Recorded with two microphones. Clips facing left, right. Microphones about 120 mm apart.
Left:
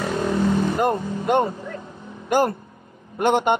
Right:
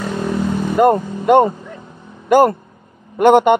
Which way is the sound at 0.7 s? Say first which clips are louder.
Right 8 dB; 65° right (ahead or behind).